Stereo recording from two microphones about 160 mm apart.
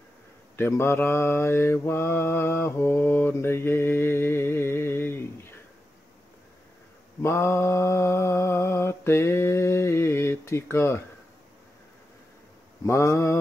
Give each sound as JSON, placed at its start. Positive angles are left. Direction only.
{"t": 0.6, "sound": "mantra", "side_deg": 15}
{"t": 7.2, "sound": "mantra", "side_deg": 15}
{"t": 12.8, "sound": "mantra", "side_deg": 20}